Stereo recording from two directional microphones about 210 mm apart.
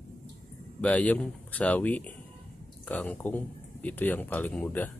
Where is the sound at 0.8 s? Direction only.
5° left (ahead or behind).